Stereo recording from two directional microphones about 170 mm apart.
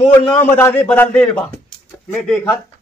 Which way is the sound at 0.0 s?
35° left (ahead or behind).